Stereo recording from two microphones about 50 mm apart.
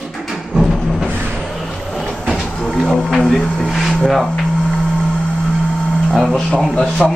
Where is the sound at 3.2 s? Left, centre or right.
Centre.